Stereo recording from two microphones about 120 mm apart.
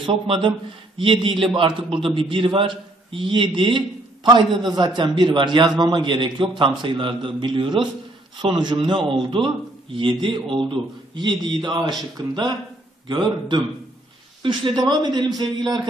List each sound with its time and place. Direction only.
0.0 s a man's voice: 45° right (ahead or behind)